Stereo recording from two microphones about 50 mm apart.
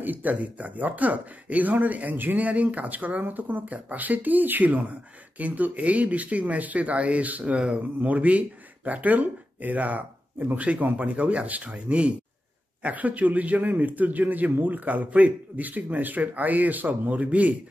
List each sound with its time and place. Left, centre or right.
0.0 s speech: right
8.0 s speech: right